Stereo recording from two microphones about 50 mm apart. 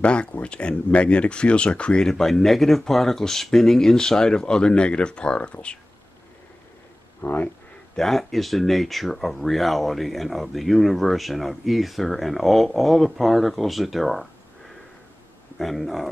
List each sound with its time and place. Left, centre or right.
0.0 s speech: left
2.0 s speech: centre
7.2 s speech: left
7.9 s speech: centre
15.6 s speech: centre